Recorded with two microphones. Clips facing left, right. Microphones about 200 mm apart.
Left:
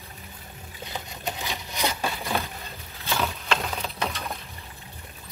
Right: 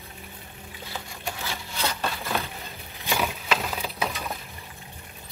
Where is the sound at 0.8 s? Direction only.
20° left (ahead or behind).